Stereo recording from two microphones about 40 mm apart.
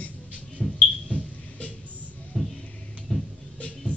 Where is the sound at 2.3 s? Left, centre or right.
Centre.